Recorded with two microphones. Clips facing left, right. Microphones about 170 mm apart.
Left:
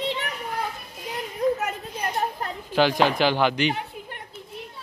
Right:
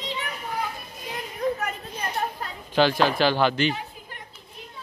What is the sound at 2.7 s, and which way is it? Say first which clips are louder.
Speech: even; 15° left (ahead or behind).